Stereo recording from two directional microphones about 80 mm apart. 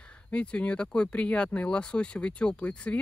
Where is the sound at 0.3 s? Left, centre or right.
Centre.